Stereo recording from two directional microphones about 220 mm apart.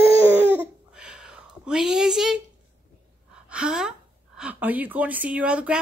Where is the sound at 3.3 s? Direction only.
5° right (ahead or behind).